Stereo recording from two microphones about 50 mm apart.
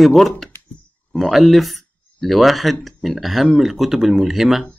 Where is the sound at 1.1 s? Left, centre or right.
Centre.